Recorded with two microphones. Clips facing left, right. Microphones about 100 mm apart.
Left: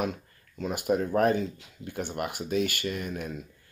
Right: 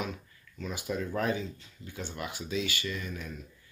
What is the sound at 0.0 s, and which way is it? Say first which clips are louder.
Speech: left 6 dB; 55° left (ahead or behind).